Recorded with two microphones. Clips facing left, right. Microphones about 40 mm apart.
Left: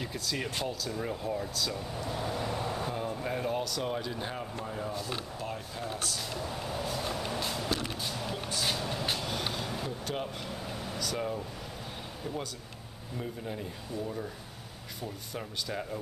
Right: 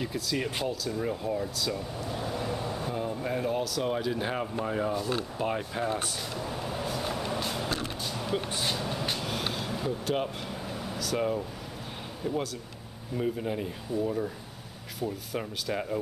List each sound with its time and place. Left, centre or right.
0.0 s speech: centre
3.8 s speech: centre; by 4.9 s right
4.9 s speech: centre
5.4 s speech: right
6.3 s vehicle: centre
10.7 s air conditioning: centre
11.1 s speech: centre
13.2 s speech: right
15.7 s speech: centre